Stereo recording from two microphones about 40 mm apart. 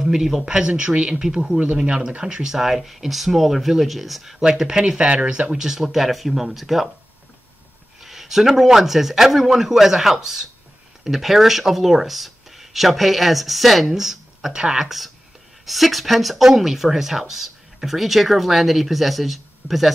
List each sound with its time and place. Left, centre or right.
0.0 s speech: centre
1.9 s speech: right
2.5 s speech: centre
8.0 s speech: centre
15.6 s speech: centre